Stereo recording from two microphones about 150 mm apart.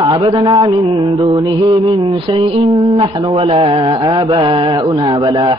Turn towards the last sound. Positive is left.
turn(degrees=-30)  # may be behind; listen again after turning